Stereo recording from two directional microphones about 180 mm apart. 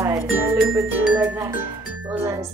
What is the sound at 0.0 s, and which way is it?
Speech, 15° right (ahead or behind).